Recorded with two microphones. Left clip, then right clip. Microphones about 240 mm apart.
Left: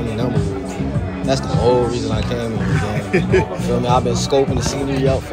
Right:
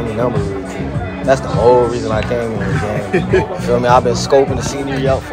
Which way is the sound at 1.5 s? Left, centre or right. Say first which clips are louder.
Right 5 dB; right.